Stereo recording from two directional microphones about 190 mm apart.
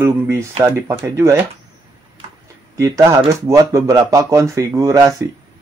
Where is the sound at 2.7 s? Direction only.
15° right (ahead or behind).